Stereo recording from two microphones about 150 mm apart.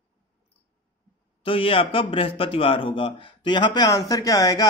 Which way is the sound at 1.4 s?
40° left (ahead or behind).